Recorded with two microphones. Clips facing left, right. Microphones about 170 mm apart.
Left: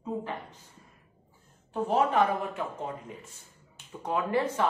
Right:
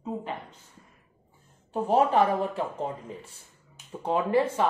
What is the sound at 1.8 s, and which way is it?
Speech, 35° right (ahead or behind).